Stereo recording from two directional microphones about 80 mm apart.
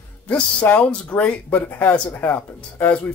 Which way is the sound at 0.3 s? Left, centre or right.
Centre.